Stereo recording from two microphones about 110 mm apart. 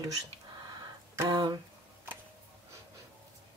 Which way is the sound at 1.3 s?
35° right (ahead or behind).